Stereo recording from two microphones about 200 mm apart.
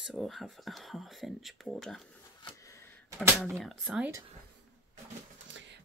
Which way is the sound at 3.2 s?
10° right (ahead or behind).